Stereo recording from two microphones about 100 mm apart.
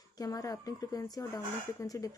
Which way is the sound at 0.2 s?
40° left (ahead or behind).